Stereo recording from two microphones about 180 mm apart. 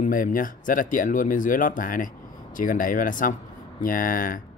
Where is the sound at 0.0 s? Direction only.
50° left (ahead or behind).